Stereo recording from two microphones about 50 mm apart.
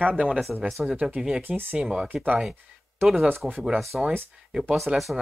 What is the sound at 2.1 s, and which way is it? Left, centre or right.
Speech, right.